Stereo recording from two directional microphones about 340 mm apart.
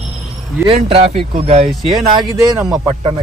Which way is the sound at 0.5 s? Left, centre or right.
Centre.